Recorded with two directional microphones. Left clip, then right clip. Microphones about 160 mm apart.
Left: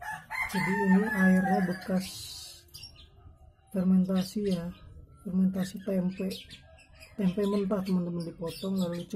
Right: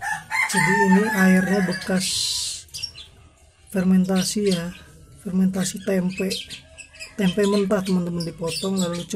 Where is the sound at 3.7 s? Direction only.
Centre (ahead or behind).